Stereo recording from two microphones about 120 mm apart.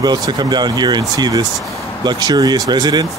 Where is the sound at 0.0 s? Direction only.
35° right (ahead or behind).